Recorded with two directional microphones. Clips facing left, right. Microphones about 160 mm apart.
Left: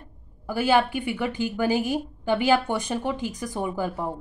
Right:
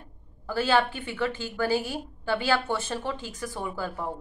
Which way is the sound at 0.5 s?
15° left (ahead or behind).